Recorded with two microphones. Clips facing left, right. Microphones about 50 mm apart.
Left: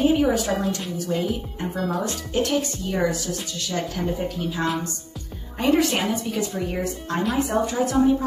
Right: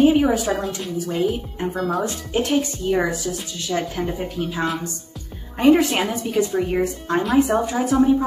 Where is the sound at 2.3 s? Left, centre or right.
Centre.